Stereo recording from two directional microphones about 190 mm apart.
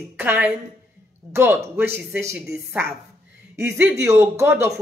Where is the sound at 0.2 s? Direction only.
10° right (ahead or behind).